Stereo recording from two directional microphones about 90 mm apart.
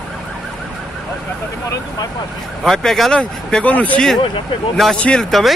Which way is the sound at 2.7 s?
Centre (ahead or behind).